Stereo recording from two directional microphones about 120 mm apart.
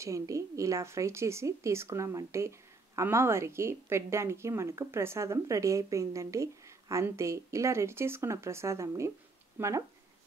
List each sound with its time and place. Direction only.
0.0 s speech: 25° right (ahead or behind)